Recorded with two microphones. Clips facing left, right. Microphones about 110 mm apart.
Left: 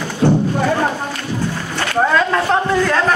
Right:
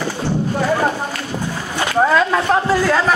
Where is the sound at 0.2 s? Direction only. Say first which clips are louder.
Left 10 dB; 55° left (ahead or behind).